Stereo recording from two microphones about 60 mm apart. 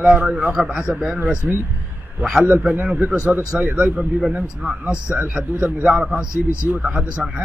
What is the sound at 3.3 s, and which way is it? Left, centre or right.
Speech, centre.